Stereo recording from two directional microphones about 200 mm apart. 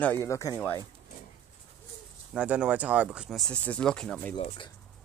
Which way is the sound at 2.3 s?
5° right (ahead or behind).